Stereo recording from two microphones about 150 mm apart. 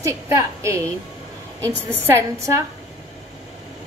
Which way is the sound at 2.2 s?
20° right (ahead or behind).